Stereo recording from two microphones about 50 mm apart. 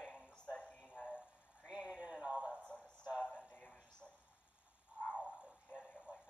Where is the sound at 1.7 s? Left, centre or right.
Centre.